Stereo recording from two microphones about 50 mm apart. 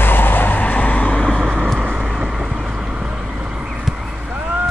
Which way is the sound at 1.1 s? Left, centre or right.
Centre.